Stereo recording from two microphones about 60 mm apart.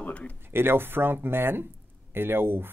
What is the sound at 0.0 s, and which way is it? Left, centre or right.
Speech, left.